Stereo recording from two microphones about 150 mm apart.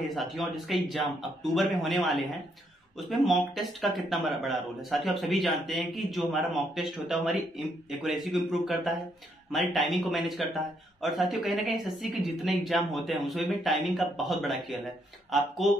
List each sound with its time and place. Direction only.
0.1 s a man's voice: centre (ahead or behind)